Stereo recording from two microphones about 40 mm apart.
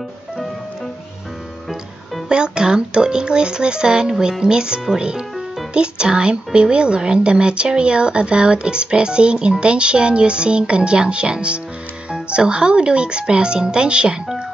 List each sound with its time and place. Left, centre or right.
2.2 s speech: right